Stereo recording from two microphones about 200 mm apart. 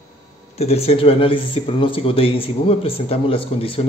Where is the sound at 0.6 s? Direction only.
30° left (ahead or behind).